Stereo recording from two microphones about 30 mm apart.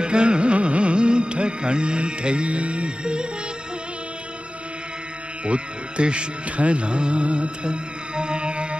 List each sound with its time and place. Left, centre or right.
0.0 s music: right
5.4 s music: right